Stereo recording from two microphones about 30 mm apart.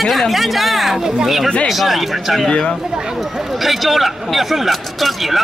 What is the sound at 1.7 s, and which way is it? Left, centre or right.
Speech, centre.